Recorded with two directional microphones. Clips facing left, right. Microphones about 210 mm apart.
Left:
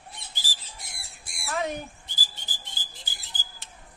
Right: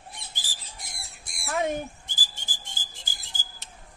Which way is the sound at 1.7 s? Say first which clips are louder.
Right 4 dB; 50° right (ahead or behind).